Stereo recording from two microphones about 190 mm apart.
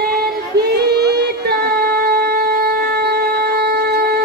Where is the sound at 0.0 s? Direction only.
55° right (ahead or behind).